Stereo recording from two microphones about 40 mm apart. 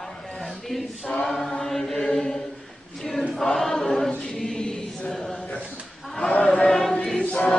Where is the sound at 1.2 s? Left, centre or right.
Centre.